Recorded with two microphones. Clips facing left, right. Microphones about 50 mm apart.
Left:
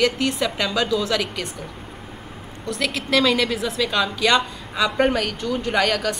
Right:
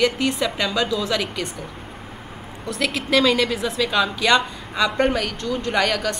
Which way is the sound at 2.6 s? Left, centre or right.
Centre.